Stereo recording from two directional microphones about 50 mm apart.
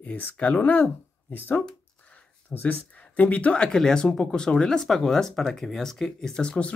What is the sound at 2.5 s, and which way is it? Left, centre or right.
Speech, left.